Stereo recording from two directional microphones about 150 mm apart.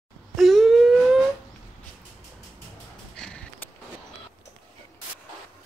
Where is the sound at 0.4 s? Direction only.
Centre (ahead or behind).